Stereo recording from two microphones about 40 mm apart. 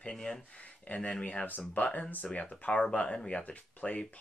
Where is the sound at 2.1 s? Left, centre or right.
Left.